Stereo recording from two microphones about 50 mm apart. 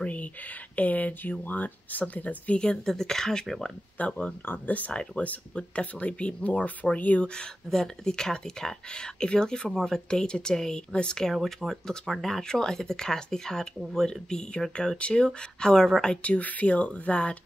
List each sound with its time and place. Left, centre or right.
0.0 s a sound: left
0.7 s speech: left
2.8 s speech: centre
4.0 s speech: left
7.3 s speech: centre
11.4 s speech: centre
16.2 s speech: left